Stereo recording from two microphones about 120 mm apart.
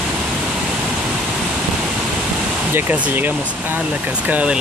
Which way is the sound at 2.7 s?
15° right (ahead or behind).